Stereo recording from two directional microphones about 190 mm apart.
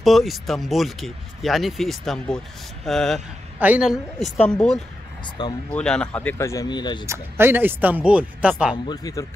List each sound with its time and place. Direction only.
0.0 s speech: centre (ahead or behind); by 7.1 s 25° left (ahead or behind)
7.1 s speech: 10° right (ahead or behind)
8.8 s speech: 20° left (ahead or behind)